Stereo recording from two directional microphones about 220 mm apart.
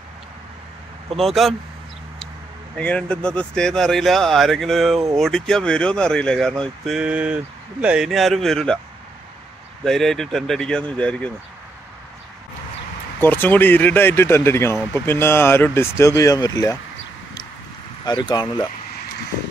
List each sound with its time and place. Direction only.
1.2 s speech: centre (ahead or behind)
2.8 s speech: 5° left (ahead or behind)
9.8 s speech: centre (ahead or behind)
13.2 s speech: 10° left (ahead or behind)
18.0 s speech: 20° left (ahead or behind)